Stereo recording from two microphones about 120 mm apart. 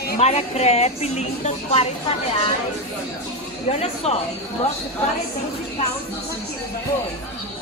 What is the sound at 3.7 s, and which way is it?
Speech, 60° left (ahead or behind).